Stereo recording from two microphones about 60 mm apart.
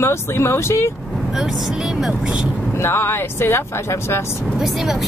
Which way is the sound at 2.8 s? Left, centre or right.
Left.